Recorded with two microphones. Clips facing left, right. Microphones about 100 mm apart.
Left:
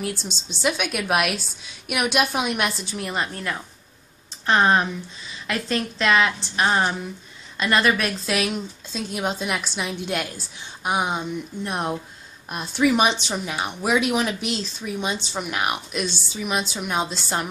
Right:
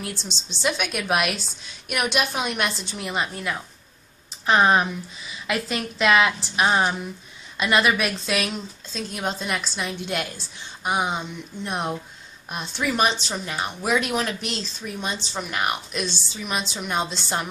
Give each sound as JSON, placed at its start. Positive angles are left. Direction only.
{"t": 0.1, "sound": "a woman's voice", "side_deg": 50}
{"t": 0.6, "sound": "a woman's voice", "side_deg": 5}